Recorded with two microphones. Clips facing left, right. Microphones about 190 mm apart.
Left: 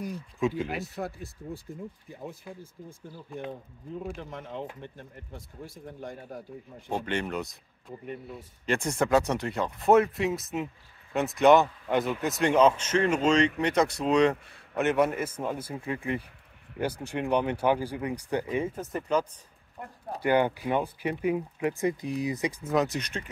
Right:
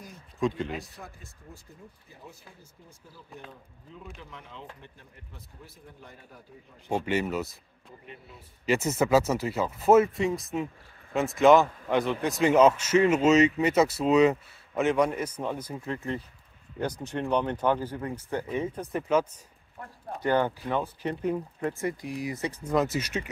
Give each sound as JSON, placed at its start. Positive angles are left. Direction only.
{"t": 0.4, "sound": "a man's voice", "side_deg": 5}
{"t": 0.9, "sound": "speech", "side_deg": 65}
{"t": 4.0, "sound": "speech", "side_deg": 50}
{"t": 7.1, "sound": "a man's voice", "side_deg": -5}
{"t": 8.1, "sound": "speech", "side_deg": 50}
{"t": 8.6, "sound": "a man's voice", "side_deg": -5}
{"t": 18.8, "sound": "a man's voice", "side_deg": 0}
{"t": 20.2, "sound": "speech", "side_deg": 10}